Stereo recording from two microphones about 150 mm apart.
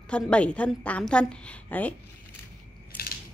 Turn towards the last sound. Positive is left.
turn(degrees=80)